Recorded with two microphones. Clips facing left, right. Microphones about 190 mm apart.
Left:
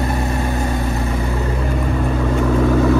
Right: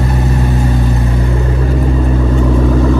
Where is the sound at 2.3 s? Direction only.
Centre (ahead or behind).